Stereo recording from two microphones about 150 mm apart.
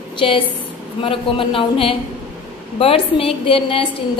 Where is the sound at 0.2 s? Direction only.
35° left (ahead or behind).